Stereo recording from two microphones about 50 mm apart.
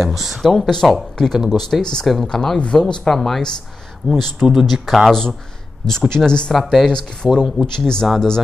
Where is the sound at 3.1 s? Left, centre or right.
Centre.